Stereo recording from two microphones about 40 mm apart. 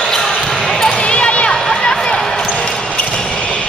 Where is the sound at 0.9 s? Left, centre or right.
Left.